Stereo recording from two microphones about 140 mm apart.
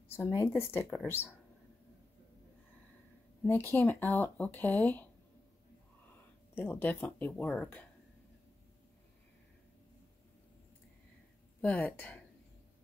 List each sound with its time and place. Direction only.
0.1 s speech: 20° left (ahead or behind)
3.4 s speech: 15° left (ahead or behind)
6.5 s speech: 15° left (ahead or behind)
11.6 s speech: 10° left (ahead or behind)